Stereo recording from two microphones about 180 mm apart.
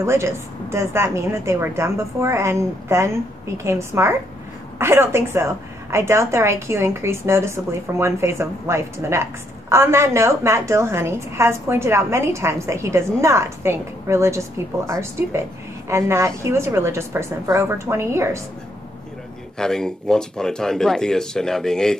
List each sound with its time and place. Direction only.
0.0 s a woman's voice: 15° right (ahead or behind)
19.6 s speech: 5° left (ahead or behind)